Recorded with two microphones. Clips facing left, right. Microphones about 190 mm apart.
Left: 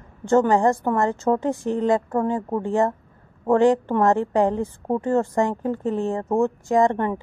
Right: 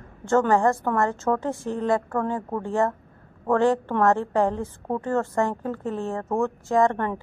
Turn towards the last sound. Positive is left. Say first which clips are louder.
# left 2 dB
turn(degrees=15)  # may be behind; listen again after turning